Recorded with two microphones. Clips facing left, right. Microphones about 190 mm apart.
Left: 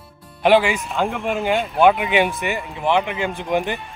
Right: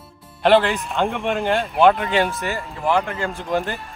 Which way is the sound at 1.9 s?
15° left (ahead or behind).